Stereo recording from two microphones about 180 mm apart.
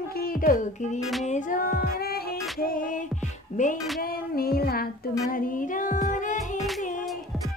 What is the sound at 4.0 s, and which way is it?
Music, 55° left (ahead or behind).